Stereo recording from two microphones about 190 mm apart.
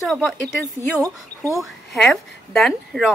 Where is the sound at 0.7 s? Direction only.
15° right (ahead or behind).